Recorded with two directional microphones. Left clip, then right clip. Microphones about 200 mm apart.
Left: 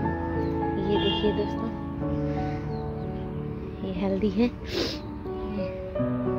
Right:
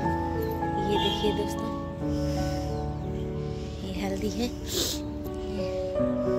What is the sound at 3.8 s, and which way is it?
Speech, 30° left (ahead or behind).